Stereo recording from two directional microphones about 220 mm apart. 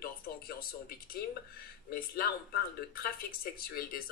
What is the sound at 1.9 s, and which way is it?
Speech, 45° left (ahead or behind).